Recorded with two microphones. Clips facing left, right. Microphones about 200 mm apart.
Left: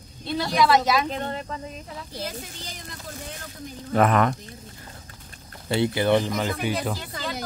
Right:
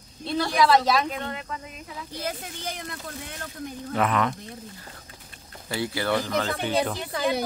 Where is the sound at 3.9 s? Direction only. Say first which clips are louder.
Left 5 dB; 50° left (ahead or behind).